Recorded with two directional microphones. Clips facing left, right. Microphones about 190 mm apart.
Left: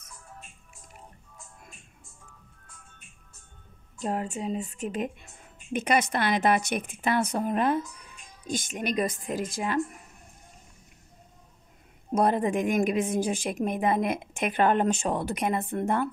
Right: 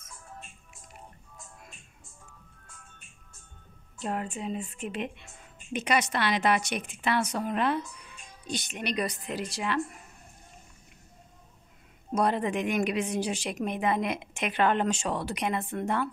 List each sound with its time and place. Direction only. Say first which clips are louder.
4.0 s speech: left 3 dB; 40° left (ahead or behind)
12.1 s speech: left 3 dB; 50° left (ahead or behind)